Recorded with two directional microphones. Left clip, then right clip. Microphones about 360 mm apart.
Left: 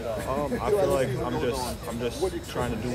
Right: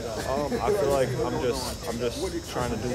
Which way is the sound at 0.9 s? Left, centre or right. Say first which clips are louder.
Right 1 dB; centre.